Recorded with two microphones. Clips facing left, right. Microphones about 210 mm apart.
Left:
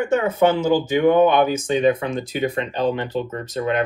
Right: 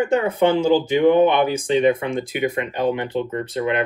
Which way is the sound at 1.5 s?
30° right (ahead or behind).